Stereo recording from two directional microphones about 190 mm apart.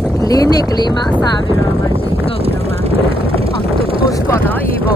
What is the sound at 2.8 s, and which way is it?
Vehicle, 30° right (ahead or behind).